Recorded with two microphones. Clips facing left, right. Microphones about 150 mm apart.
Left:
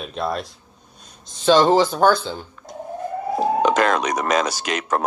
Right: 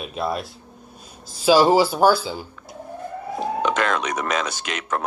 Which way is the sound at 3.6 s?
35° left (ahead or behind).